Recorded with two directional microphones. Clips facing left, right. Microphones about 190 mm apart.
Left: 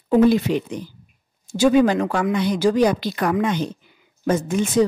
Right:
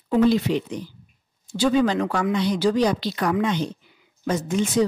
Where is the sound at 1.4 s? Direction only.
45° left (ahead or behind).